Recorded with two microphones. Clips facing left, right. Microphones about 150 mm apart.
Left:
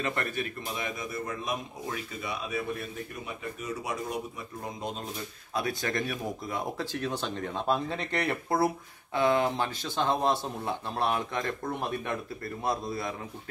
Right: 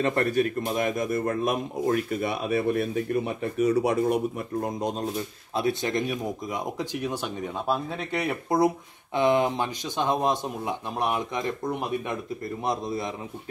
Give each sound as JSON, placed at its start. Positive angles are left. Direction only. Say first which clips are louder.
{"t": 0.0, "sound": "speech", "louder": "right 9 dB", "side_deg": -35}
{"t": 0.7, "sound": "speech", "louder": "right 9 dB", "side_deg": -50}
{"t": 5.5, "sound": "speech", "louder": "right 5 dB", "side_deg": -25}